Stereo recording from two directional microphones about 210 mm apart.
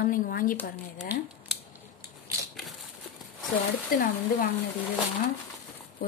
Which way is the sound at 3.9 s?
45° left (ahead or behind).